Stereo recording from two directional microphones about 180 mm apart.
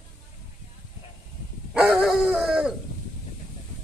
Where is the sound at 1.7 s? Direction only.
5° right (ahead or behind).